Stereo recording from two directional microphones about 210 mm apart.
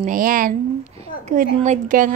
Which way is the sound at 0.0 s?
40° right (ahead or behind).